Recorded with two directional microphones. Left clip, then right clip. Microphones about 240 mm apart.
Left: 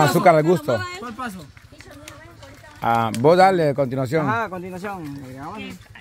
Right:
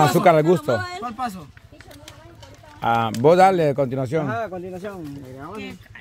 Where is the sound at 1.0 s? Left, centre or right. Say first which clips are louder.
Right 3 dB; centre.